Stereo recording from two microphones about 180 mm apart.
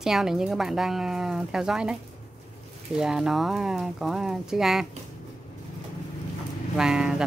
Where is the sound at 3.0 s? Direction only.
5° right (ahead or behind).